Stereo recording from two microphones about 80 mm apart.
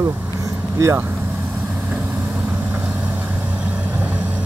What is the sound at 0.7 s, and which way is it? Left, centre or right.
Speech, right.